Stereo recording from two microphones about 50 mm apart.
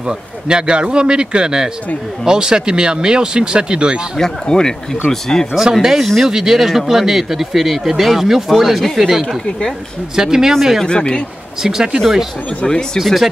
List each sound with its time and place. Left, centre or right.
0.0 s a man's voice: centre
4.2 s speech: centre
5.7 s speech: centre
10.9 s speech: centre
11.6 s speech: centre
12.6 s speech: centre
13.0 s speech: centre